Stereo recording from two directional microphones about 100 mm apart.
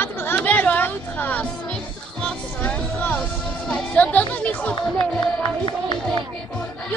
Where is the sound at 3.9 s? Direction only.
15° left (ahead or behind).